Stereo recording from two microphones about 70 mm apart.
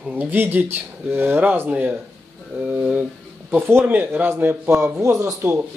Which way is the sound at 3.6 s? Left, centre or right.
Right.